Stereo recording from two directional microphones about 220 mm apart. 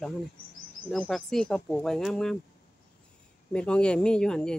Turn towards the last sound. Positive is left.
turn(degrees=5)  # may be behind; listen again after turning